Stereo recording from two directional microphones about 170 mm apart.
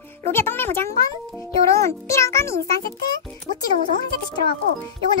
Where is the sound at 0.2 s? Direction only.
15° left (ahead or behind).